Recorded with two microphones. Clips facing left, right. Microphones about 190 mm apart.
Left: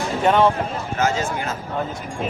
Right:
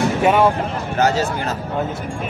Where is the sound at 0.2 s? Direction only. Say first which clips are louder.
Even; 10° right (ahead or behind).